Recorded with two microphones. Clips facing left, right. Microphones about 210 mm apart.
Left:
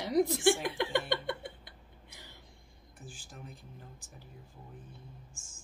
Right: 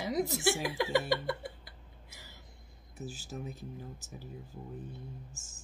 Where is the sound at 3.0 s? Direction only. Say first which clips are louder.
Right 9 dB; 40° right (ahead or behind).